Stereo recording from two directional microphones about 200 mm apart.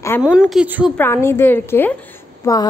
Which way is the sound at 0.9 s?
10° left (ahead or behind).